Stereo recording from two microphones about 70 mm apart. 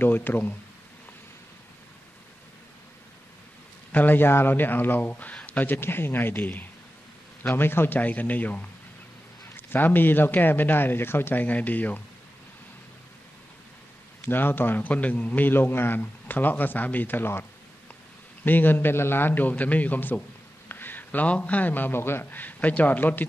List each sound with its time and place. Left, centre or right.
0.0 s a man's voice: left
3.9 s a man's voice: left
14.2 s a man's voice: left